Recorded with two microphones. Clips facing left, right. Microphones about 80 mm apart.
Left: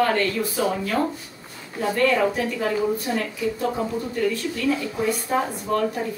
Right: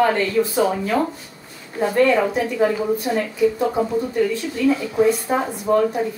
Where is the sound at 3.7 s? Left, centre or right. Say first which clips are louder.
Right 6 dB; centre.